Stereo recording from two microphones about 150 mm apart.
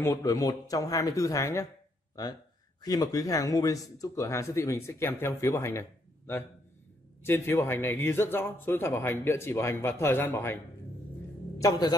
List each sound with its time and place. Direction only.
0.0 s speech: 20° left (ahead or behind)
2.8 s speech: 25° left (ahead or behind)